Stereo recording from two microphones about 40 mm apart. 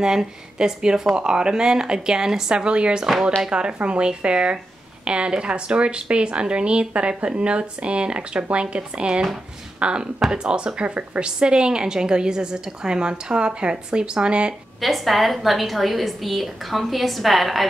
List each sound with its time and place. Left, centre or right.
0.0 s speech: centre
14.8 s a woman's voice: centre